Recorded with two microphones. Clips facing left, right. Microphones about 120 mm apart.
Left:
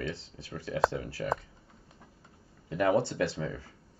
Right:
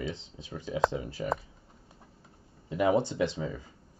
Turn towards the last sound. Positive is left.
turn(degrees=-15)  # may be behind; listen again after turning